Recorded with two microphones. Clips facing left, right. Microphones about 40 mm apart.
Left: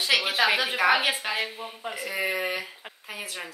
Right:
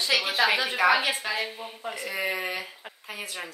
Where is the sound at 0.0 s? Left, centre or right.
Centre.